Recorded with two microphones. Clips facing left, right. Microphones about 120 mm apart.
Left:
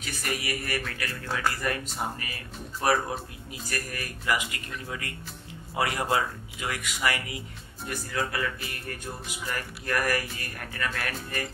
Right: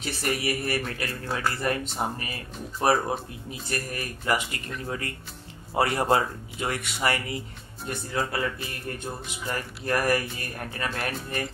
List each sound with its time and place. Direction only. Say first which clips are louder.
0.0 s speech: right 5 dB; 30° right (ahead or behind)